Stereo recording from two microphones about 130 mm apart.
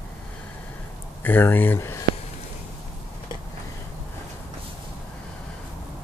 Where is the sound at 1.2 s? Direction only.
15° left (ahead or behind).